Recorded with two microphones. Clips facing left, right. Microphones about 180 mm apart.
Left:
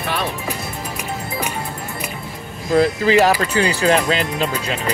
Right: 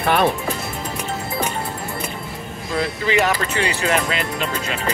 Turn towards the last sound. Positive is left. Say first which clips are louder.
# left 3 dB
turn(degrees=30)  # may be behind; listen again after turning